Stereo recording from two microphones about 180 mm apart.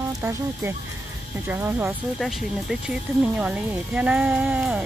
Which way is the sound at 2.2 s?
Centre (ahead or behind).